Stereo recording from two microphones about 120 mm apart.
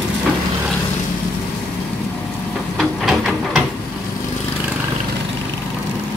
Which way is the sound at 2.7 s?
Centre (ahead or behind).